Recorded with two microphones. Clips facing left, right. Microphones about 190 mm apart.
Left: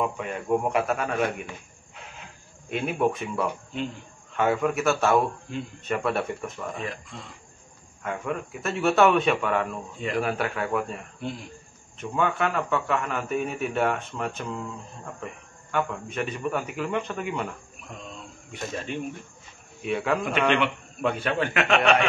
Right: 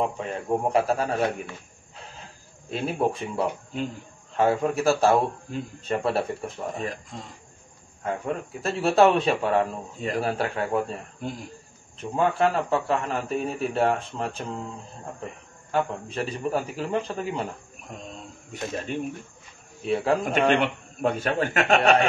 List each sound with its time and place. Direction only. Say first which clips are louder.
0.0 s speech: right 1 dB; 30° right (ahead or behind)
2.7 s speech: even; 30° right (ahead or behind)
15.7 s speech: right 2 dB; 35° right (ahead or behind)